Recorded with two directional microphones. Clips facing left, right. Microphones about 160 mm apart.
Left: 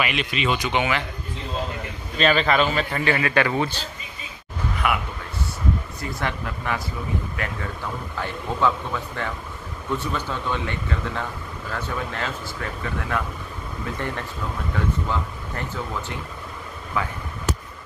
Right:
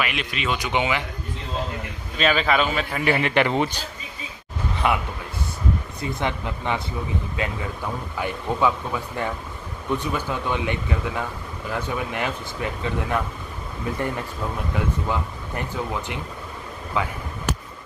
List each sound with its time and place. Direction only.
0.0 s a man's voice: centre (ahead or behind)
0.6 s speech: 15° right (ahead or behind)
2.1 s a man's voice: 5° right (ahead or behind)
3.1 s speech: 20° right (ahead or behind)
4.8 s speech: 25° right (ahead or behind)
15.0 s speech: 15° right (ahead or behind)